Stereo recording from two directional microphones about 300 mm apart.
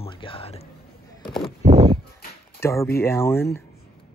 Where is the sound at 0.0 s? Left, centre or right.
Centre.